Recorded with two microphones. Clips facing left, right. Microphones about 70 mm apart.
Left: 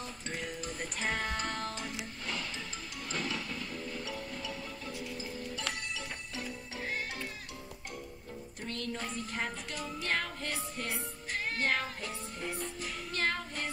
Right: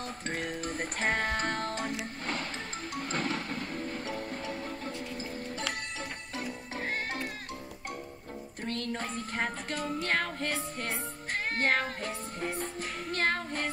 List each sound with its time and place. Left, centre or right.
0.3 s music: right
3.0 s music: right
6.3 s music: right
8.6 s music: right